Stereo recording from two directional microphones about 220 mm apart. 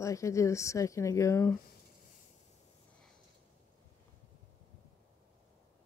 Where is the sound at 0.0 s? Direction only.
15° left (ahead or behind).